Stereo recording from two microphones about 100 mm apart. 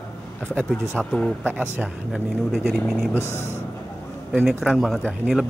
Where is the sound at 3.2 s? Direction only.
25° left (ahead or behind).